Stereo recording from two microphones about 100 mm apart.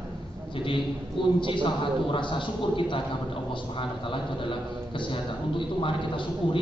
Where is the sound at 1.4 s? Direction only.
55° left (ahead or behind).